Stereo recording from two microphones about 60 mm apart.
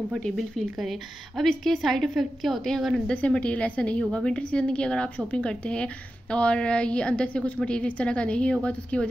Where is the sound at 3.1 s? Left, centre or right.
Left.